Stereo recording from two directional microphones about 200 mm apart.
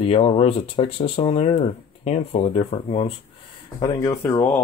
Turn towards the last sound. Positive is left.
turn(degrees=15)  # may be behind; listen again after turning